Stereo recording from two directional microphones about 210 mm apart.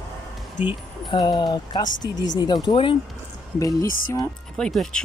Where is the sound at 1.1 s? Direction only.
20° left (ahead or behind).